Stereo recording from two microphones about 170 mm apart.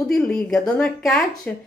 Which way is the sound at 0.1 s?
5° left (ahead or behind).